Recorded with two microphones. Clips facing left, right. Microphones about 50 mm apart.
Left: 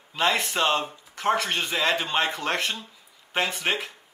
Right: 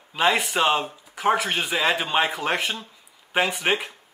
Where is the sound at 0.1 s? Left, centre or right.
Centre.